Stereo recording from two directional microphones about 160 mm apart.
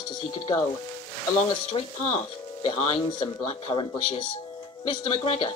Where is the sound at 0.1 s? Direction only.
25° left (ahead or behind).